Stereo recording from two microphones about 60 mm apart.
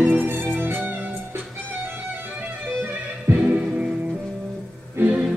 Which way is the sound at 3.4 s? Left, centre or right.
Right.